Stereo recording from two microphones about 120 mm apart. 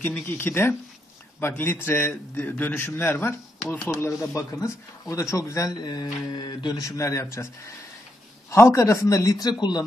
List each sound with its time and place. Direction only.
0.0 s a man's voice: 15° left (ahead or behind)
3.6 s speech: 5° left (ahead or behind)
4.2 s a man's voice: 25° left (ahead or behind)
8.5 s a man's voice: 25° left (ahead or behind)